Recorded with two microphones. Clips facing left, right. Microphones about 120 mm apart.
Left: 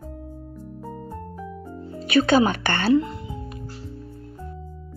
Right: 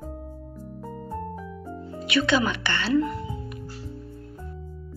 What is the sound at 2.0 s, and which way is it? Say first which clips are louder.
Speech: left 5 dB; 45° left (ahead or behind).